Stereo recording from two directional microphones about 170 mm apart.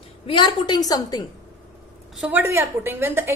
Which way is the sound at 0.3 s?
30° left (ahead or behind).